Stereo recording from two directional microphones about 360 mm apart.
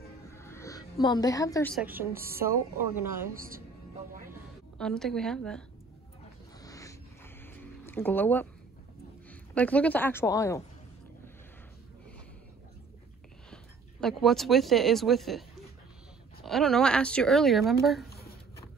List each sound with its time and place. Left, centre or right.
0.3 s a sound: centre
2.0 s a woman's voice: centre
3.3 s speech: right
4.3 s speech: centre
6.6 s a sound: centre
7.4 s music: centre
9.3 s a woman's voice: centre
14.0 s speech: centre
16.4 s speech: centre